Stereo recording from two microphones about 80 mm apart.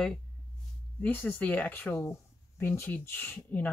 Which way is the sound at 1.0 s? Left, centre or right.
Left.